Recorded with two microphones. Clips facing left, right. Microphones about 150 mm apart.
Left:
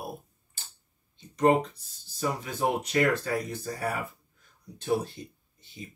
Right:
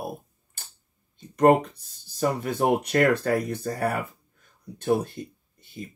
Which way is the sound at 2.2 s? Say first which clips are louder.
Right 5 dB; 60° right (ahead or behind).